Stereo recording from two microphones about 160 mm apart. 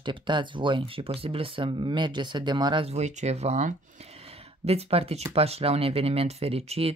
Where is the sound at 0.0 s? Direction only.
30° right (ahead or behind).